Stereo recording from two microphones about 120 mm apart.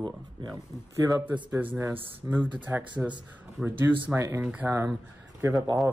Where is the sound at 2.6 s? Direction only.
15° right (ahead or behind).